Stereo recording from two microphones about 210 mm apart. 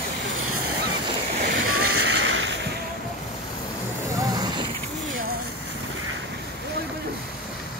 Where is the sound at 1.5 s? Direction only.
90° right; by 2.5 s 60° right (ahead or behind).